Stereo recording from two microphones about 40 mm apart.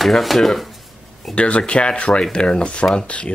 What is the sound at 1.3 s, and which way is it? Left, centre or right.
Speech, left.